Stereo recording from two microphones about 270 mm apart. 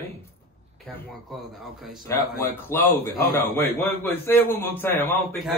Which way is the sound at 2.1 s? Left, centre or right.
Centre.